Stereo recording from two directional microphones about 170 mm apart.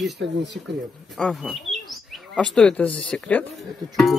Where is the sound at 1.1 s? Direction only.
Centre (ahead or behind).